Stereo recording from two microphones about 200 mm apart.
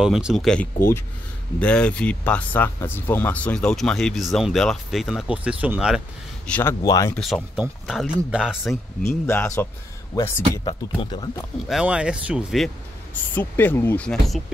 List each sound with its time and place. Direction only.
0.0 s speech: centre (ahead or behind)
6.5 s speech: 10° left (ahead or behind)
7.2 s speech: centre (ahead or behind)
9.2 s speech: 10° left (ahead or behind)
10.6 s speech: 25° left (ahead or behind)
11.7 s speech: 5° right (ahead or behind)